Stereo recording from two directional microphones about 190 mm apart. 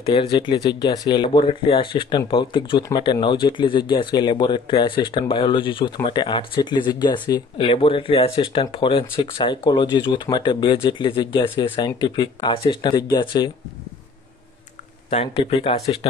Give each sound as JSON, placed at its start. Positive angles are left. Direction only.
{"t": 0.0, "sound": "speech", "side_deg": 25}
{"t": 15.0, "sound": "speech", "side_deg": 30}